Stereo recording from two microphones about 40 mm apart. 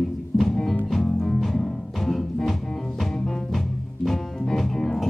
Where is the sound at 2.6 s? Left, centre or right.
Centre.